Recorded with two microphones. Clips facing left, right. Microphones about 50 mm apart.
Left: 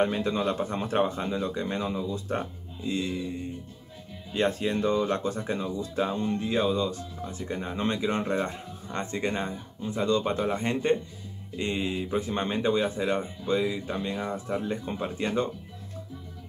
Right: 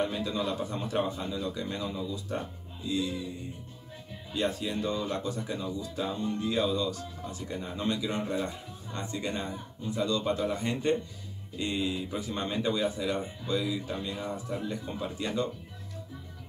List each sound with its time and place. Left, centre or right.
0.0 s speech: left
4.3 s speech: left